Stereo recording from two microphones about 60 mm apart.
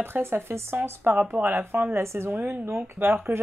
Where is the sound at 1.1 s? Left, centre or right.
Right.